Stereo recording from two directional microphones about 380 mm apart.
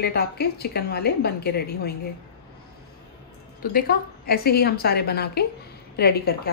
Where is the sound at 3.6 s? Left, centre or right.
Left.